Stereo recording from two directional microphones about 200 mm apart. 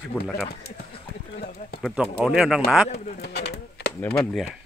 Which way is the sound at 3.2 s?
55° left (ahead or behind).